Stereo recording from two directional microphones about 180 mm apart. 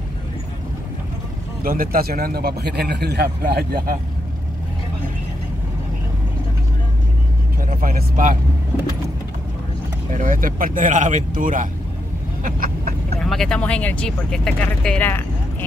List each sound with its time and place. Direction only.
1.6 s a man's voice: 55° right (ahead or behind)
7.6 s speech: 50° right (ahead or behind)
10.1 s speech: 45° right (ahead or behind)
12.4 s vehicle: 50° right (ahead or behind)
13.2 s speech: 5° left (ahead or behind)